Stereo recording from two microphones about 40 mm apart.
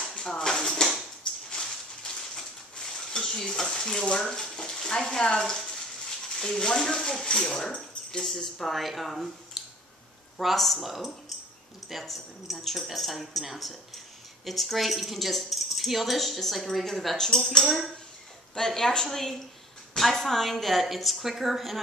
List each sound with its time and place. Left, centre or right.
0.2 s dishes: centre
1.5 s a sound: centre
3.1 s stir: centre
3.8 s a woman's voice: centre